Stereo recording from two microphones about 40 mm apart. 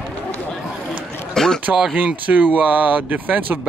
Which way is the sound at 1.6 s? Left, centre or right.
Right.